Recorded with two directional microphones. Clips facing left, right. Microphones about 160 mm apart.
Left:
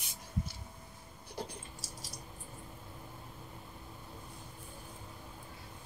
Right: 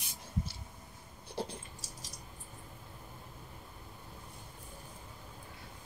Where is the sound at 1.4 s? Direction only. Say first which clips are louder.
Right 3 dB; 30° right (ahead or behind).